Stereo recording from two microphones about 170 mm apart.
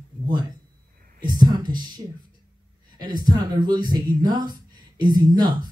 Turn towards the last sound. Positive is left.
turn(degrees=-25)  # may be behind; listen again after turning